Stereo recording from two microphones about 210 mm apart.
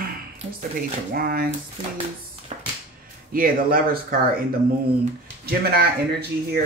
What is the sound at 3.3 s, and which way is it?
Speech, 45° right (ahead or behind).